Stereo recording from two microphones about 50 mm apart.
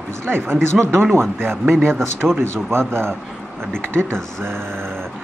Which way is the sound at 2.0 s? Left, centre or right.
Centre.